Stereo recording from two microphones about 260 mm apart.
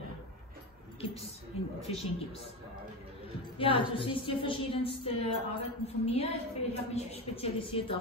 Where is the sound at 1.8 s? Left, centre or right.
Left.